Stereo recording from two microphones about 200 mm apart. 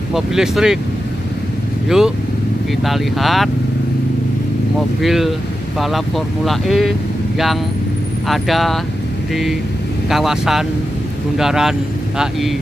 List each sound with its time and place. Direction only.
0.1 s speech: centre (ahead or behind)
1.9 s speech: 5° right (ahead or behind)
5.0 s speech: centre (ahead or behind)
8.3 s speech: centre (ahead or behind)